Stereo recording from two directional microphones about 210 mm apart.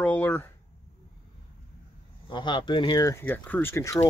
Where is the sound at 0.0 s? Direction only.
10° left (ahead or behind).